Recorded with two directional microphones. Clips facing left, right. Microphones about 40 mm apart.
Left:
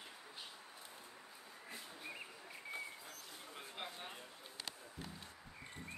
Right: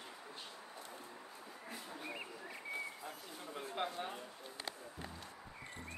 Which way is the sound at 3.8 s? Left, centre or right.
Centre.